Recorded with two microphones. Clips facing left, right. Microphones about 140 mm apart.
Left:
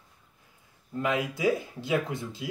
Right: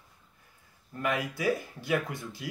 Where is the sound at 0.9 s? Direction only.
20° left (ahead or behind).